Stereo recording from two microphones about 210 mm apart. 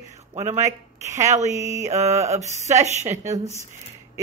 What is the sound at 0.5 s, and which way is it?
Speech, 15° right (ahead or behind).